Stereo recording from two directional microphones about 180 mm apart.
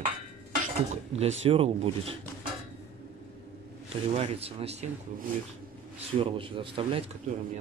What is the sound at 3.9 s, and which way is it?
Speech, 35° right (ahead or behind).